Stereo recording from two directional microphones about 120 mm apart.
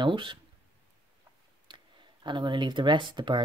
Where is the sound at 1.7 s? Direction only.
40° right (ahead or behind).